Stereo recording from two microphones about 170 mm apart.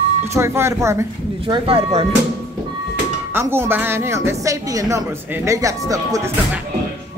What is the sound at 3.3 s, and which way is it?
A woman's voice, 15° right (ahead or behind).